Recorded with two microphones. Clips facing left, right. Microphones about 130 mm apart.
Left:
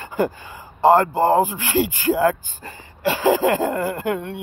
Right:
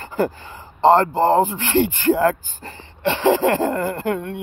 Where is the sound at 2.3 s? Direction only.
40° right (ahead or behind).